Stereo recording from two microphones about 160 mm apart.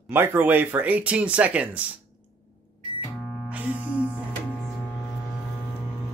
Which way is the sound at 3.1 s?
5° left (ahead or behind).